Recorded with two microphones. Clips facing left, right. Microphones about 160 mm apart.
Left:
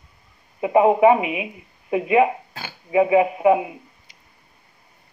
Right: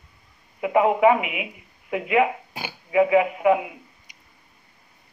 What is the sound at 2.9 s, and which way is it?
Speech, 25° left (ahead or behind).